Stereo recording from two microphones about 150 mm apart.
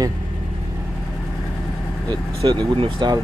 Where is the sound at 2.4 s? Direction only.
30° right (ahead or behind).